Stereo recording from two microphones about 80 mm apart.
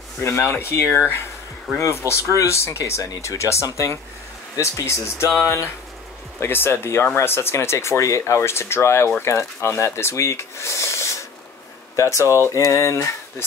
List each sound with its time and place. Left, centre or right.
0.2 s speech: left
1.8 s speech: left